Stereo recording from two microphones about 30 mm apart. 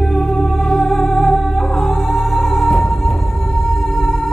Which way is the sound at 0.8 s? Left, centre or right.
Centre.